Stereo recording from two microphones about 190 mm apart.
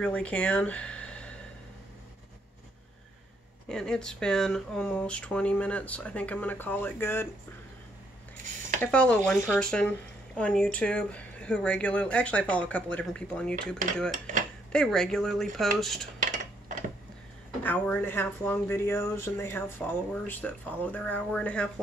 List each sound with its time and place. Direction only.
0.0 s speech: 5° left (ahead or behind)
3.6 s speech: 5° left (ahead or behind)
8.8 s speech: 5° left (ahead or behind)
16.2 s cutlery: 45° right (ahead or behind)
17.6 s speech: 10° left (ahead or behind)